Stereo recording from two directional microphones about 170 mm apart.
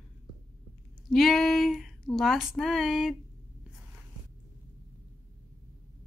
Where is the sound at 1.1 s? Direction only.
Centre (ahead or behind).